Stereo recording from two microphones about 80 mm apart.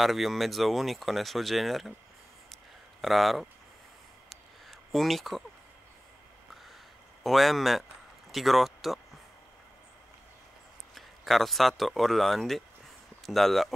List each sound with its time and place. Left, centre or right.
0.0 s speech: centre
2.5 s a sound: centre
7.2 s speech: centre
11.0 s speech: centre